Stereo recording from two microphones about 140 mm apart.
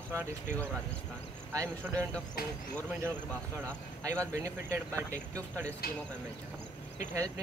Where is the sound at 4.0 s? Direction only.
20° right (ahead or behind).